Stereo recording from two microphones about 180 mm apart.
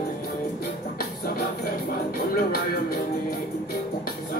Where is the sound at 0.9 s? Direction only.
60° left (ahead or behind).